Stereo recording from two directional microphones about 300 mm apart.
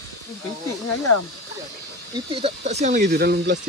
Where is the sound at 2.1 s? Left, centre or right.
Centre; by 3.6 s right.